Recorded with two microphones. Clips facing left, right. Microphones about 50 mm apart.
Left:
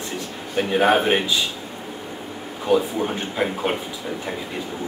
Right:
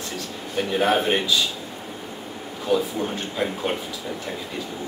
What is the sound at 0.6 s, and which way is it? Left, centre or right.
Speech, centre.